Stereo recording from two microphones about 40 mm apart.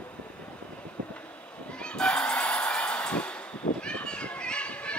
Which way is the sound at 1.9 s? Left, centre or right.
Centre.